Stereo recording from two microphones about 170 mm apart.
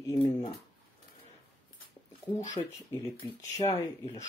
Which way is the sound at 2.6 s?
30° left (ahead or behind).